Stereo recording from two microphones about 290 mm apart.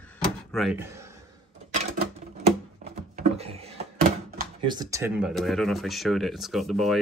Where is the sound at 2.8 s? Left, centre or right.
Right.